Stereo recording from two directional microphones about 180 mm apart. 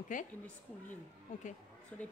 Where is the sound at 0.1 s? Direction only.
45° left (ahead or behind).